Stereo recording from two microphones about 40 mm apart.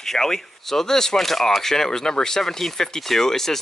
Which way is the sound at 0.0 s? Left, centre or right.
Centre.